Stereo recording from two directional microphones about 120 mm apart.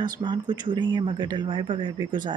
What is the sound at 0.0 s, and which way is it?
Speech, 40° right (ahead or behind).